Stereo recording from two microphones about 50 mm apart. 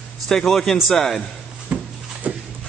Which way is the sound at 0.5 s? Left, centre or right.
Centre.